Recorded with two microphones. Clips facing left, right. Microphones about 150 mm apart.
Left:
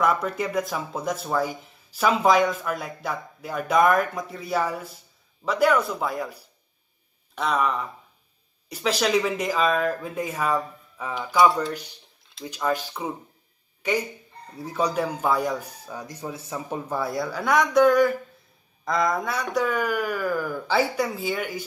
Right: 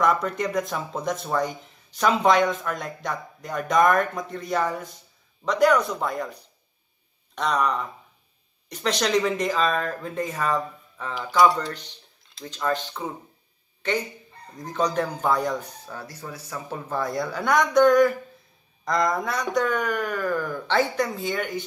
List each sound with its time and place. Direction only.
0.0 s speech: 5° left (ahead or behind)
15.9 s speech: 15° left (ahead or behind)